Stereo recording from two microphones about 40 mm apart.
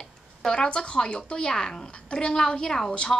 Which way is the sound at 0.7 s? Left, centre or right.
Left.